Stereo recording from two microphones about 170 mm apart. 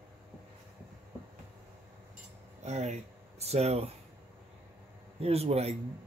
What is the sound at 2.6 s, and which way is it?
Speech, 40° right (ahead or behind).